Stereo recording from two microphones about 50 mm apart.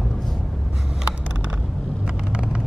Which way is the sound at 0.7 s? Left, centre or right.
Centre.